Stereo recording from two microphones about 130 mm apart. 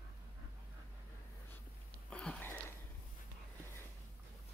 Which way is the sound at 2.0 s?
5° left (ahead or behind).